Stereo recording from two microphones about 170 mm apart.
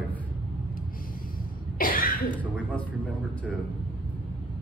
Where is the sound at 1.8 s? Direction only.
60° left (ahead or behind).